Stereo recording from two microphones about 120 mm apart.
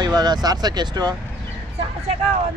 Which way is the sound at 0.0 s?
35° right (ahead or behind).